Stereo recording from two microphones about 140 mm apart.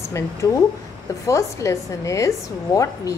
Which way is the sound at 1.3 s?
20° left (ahead or behind).